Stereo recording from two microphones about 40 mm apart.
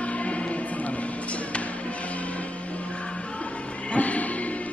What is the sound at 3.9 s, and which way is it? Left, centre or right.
Music, left.